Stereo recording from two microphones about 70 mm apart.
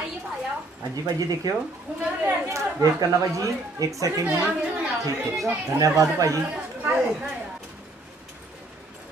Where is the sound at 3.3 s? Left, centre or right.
Right.